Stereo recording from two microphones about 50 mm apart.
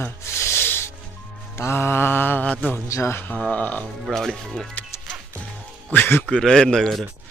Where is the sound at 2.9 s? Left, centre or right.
Left.